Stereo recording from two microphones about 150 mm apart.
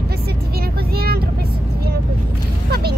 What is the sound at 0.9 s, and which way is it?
Vehicle, 90° right.